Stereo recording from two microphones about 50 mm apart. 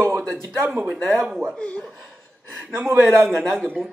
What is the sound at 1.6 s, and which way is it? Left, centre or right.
Speech, left.